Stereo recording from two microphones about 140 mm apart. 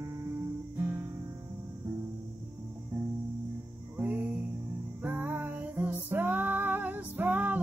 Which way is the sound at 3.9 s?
15° right (ahead or behind).